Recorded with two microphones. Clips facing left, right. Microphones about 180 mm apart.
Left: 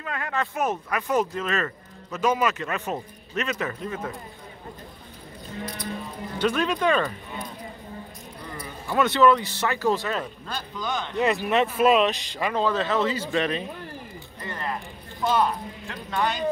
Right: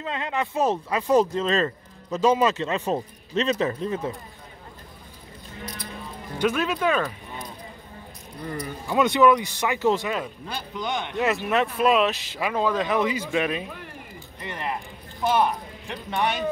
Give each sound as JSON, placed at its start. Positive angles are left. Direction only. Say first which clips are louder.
{"t": 0.0, "sound": "speech", "louder": "right 2 dB", "side_deg": -20}
{"t": 6.3, "sound": "speech", "louder": "even", "side_deg": -10}
{"t": 8.8, "sound": "speech", "louder": "right 1 dB", "side_deg": -15}
{"t": 11.1, "sound": "speech", "louder": "left 1 dB", "side_deg": 0}
{"t": 14.4, "sound": "music", "louder": "right 1 dB", "side_deg": -20}
{"t": 15.2, "sound": "speech", "louder": "right 1 dB", "side_deg": -20}